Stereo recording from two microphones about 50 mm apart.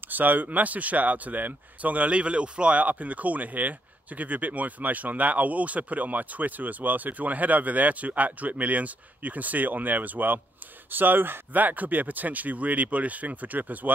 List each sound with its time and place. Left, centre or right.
0.1 s speech: right